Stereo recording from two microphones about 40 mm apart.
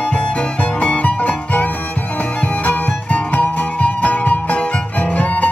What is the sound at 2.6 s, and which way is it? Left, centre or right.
Music, left.